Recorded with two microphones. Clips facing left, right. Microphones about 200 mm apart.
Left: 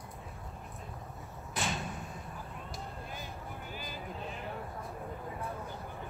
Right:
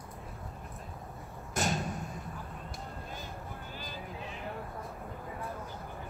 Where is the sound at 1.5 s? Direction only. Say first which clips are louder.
Right 4 dB; 45° right (ahead or behind).